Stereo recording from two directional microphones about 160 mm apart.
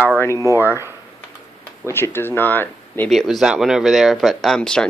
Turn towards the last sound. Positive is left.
turn(degrees=5)  # may be behind; listen again after turning